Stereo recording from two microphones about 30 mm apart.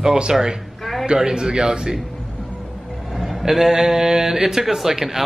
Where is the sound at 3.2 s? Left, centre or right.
Centre.